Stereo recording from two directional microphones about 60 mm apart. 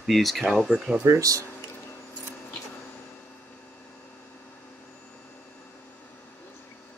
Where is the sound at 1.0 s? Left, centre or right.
Right.